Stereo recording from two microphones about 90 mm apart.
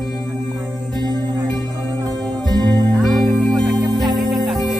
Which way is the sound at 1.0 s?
50° right (ahead or behind).